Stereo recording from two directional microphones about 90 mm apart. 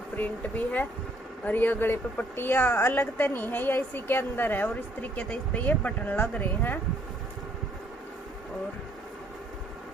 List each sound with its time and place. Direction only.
0.1 s a woman's voice: 20° left (ahead or behind)